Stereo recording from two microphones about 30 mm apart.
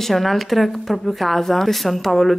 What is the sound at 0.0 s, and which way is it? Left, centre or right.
A woman's voice, centre.